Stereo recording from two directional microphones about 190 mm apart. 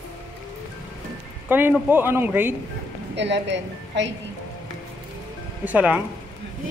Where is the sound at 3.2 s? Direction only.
65° right (ahead or behind).